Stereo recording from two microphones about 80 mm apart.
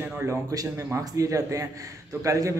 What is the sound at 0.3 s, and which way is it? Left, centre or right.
A man's voice, right.